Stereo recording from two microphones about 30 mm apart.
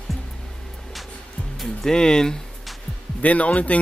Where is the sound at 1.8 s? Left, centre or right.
Left.